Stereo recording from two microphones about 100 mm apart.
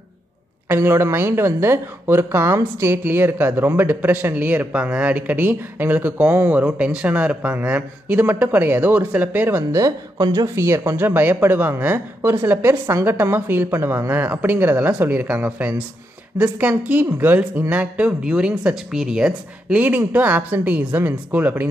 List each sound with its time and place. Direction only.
0.7 s speech: 25° right (ahead or behind)
9.8 s speech: 35° right (ahead or behind); by 21.6 s 15° right (ahead or behind)